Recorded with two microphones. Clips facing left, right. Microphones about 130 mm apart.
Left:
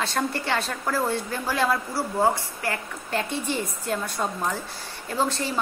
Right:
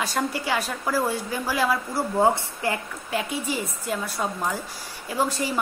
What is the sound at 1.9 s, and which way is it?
Speech, 20° right (ahead or behind).